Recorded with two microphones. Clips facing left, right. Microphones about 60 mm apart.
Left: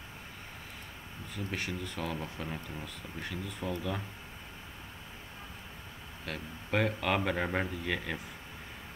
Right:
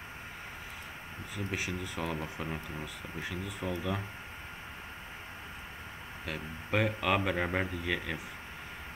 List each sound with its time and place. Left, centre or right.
1.3 s a man's voice: centre
3.2 s speech: centre
6.2 s a man's voice: centre